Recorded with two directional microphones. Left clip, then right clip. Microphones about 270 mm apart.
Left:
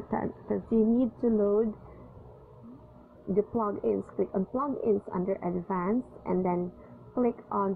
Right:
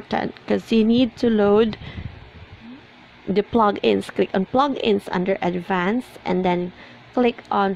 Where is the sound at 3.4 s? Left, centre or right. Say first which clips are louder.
Right 11 dB; right.